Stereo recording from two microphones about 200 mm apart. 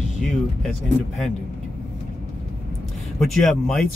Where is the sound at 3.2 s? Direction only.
Centre (ahead or behind).